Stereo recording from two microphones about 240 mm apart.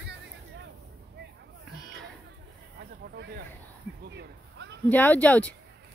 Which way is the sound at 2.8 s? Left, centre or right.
Right.